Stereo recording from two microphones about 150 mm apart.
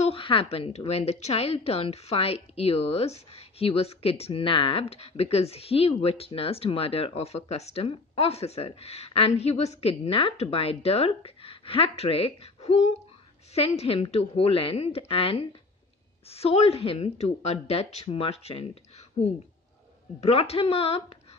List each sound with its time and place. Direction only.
0.0 s a woman's voice: 35° left (ahead or behind)
20.2 s speech: 45° left (ahead or behind)